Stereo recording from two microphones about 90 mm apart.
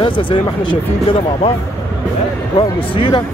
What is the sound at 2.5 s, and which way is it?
Speech, 65° left (ahead or behind).